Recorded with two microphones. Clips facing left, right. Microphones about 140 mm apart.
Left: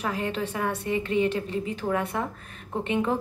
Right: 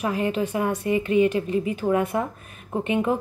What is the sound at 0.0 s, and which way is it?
Speech, 15° right (ahead or behind).